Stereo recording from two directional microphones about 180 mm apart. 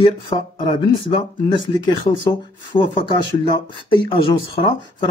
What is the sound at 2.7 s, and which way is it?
Speech, 25° left (ahead or behind).